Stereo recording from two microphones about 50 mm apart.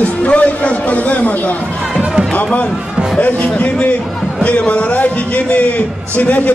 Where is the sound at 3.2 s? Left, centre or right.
Left.